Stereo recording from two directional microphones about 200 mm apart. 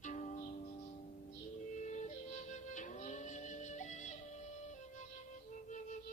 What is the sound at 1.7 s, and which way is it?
Music, 35° left (ahead or behind).